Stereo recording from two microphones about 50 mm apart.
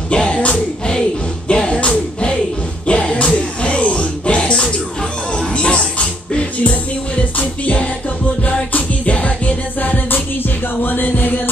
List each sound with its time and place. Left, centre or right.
0.1 s speech: left
1.5 s music: centre; by 11.3 s left